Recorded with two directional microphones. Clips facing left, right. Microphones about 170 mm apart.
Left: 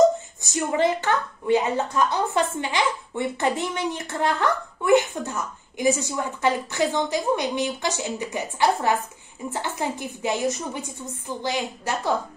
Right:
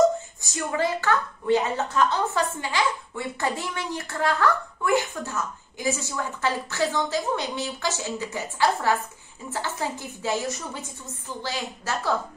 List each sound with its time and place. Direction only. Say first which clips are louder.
0.4 s a woman's voice: left 5 dB; 20° left (ahead or behind)